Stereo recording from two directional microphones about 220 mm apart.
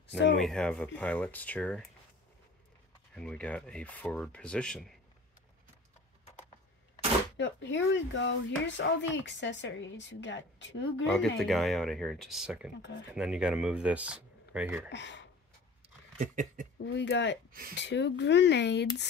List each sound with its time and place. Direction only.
0.4 s speech: centre (ahead or behind)
3.2 s speech: 5° left (ahead or behind)
7.3 s a woman's voice: 55° left (ahead or behind)
11.1 s speech: centre (ahead or behind)
14.9 s speech: 55° left (ahead or behind)
16.2 s a sound: 35° right (ahead or behind)
16.7 s speech: 55° left (ahead or behind)
17.5 s speech: 40° right (ahead or behind)
17.7 s speech: 55° left (ahead or behind)